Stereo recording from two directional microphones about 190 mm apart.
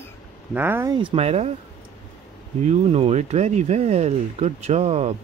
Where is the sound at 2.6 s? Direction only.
35° right (ahead or behind).